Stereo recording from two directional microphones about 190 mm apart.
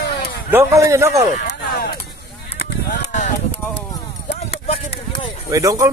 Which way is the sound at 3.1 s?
40° left (ahead or behind).